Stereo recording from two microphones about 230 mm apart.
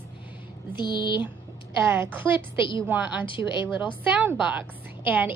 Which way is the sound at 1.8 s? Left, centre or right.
Centre.